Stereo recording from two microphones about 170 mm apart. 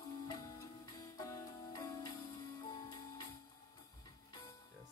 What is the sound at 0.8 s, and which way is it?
Music, 20° left (ahead or behind).